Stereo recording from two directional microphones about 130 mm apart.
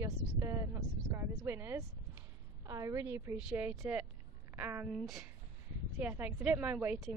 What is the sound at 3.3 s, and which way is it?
A woman's voice, 10° right (ahead or behind).